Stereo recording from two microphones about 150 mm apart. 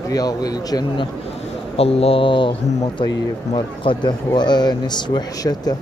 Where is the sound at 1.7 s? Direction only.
40° left (ahead or behind).